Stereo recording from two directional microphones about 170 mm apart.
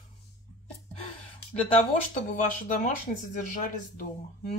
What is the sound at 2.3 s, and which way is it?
Speech, 45° left (ahead or behind).